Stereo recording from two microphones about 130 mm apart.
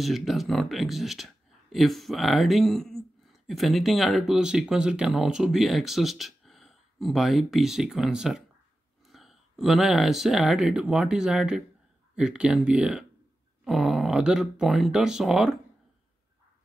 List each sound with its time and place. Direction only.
0.0 s speech: centre (ahead or behind)